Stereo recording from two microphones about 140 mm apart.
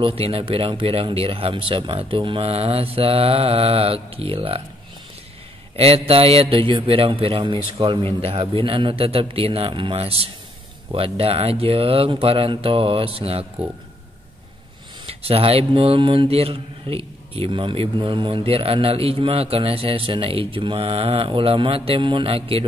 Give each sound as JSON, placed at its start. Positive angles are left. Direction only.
{"t": 0.0, "sound": "speech", "side_deg": -45}
{"t": 5.8, "sound": "speech", "side_deg": -45}
{"t": 15.0, "sound": "speech", "side_deg": -45}